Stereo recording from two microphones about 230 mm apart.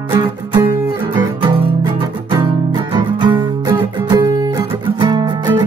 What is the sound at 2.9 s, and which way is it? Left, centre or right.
Music, centre.